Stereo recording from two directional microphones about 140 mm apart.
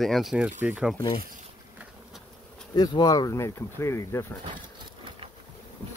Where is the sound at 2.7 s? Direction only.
30° left (ahead or behind).